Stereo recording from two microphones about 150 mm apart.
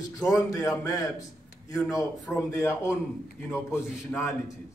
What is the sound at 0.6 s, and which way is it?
Speech, 20° left (ahead or behind).